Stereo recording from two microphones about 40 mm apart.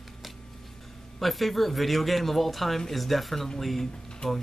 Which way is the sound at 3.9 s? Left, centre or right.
Centre.